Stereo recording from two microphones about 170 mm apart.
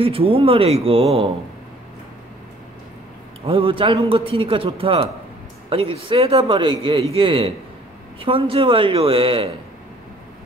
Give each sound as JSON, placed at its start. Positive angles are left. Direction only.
{"t": 0.0, "sound": "a man's voice", "side_deg": -35}
{"t": 3.4, "sound": "a man's voice", "side_deg": -30}